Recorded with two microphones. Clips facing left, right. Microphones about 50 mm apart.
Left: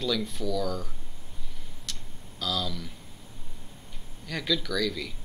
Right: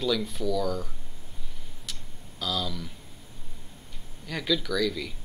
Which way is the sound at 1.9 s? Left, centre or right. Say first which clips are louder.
Even; centre.